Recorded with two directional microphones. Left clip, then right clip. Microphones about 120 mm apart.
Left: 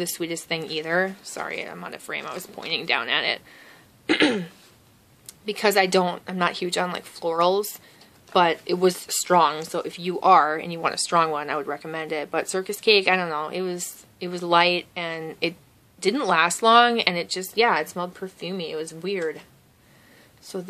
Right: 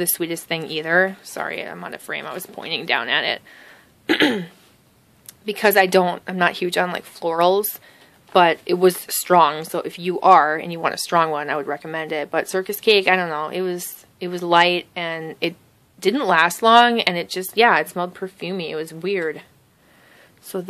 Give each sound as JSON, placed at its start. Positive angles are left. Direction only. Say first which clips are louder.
{"t": 0.0, "sound": "speech", "louder": "right 4 dB", "side_deg": -50}
{"t": 4.0, "sound": "throat clearing", "louder": "right 3 dB", "side_deg": -40}
{"t": 5.2, "sound": "speech", "louder": "right 4 dB", "side_deg": -45}
{"t": 20.5, "sound": "speech", "louder": "right 5 dB", "side_deg": -60}